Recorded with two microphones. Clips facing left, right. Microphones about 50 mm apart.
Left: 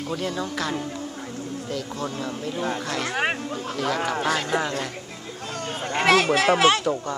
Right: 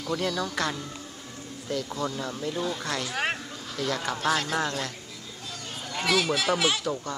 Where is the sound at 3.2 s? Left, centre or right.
Centre.